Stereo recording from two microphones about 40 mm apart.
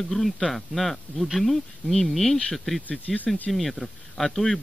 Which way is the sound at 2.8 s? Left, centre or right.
Left.